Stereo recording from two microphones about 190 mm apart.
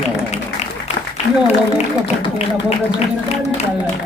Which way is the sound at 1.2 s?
55° left (ahead or behind).